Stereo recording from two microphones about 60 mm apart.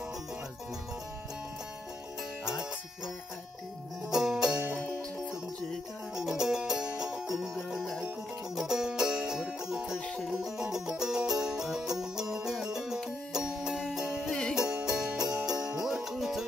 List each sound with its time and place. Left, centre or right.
4.1 s music: centre
6.1 s music: centre
9.9 s music: left
10.2 s music: centre